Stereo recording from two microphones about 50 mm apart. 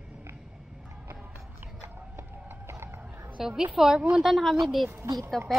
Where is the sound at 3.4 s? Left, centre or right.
Centre.